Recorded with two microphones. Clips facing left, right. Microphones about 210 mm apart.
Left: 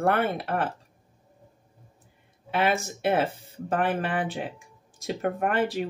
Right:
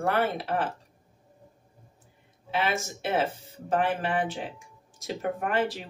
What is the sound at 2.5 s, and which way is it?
Speech, 55° left (ahead or behind).